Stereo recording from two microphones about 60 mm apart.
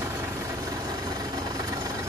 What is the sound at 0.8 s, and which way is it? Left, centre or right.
Vehicle, right.